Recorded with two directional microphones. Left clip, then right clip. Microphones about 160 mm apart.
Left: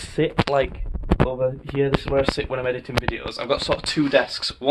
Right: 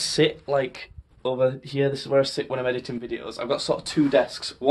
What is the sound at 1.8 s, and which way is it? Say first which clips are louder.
Speech: left 1 dB; 5° left (ahead or behind).